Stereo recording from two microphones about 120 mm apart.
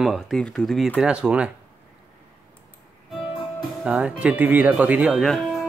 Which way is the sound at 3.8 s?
10° right (ahead or behind).